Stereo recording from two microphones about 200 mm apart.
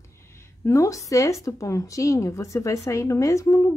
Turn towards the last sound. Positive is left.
turn(degrees=15)  # may be behind; listen again after turning